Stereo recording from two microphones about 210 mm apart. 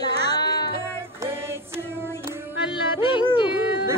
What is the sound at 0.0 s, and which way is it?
Music, 20° left (ahead or behind).